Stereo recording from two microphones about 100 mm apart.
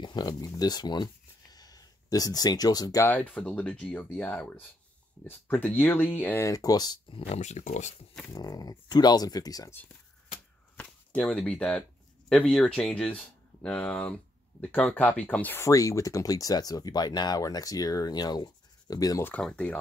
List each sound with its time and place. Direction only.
0.0 s speech: 40° left (ahead or behind)
3.0 s speech: 15° left (ahead or behind)
6.4 s speech: 40° left (ahead or behind)
7.1 s speech: 80° left
8.3 s speech: 40° left (ahead or behind)
10.8 s speech: 10° left (ahead or behind)
15.6 s speech: 30° left (ahead or behind)
19.4 s speech: 10° left (ahead or behind)